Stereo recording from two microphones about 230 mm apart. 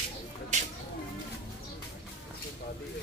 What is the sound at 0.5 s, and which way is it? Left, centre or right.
Music, right.